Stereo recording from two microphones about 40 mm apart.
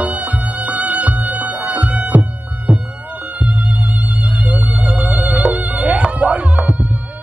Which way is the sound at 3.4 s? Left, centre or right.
Right.